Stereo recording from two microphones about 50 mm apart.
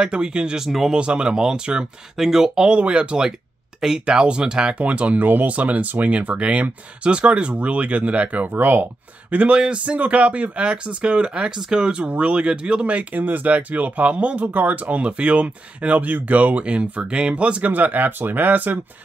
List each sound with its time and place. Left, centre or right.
0.0 s speech: centre
0.6 s speech: centre
0.9 s speech: right
9.3 s speech: right
14.5 s speech: right
15.0 s speech: right